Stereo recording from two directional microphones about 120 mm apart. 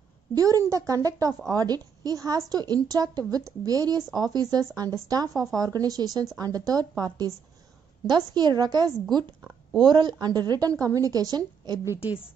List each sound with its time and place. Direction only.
0.4 s a woman's voice: 25° right (ahead or behind)